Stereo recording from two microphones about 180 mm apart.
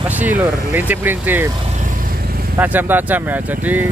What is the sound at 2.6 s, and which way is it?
Speech, 10° right (ahead or behind).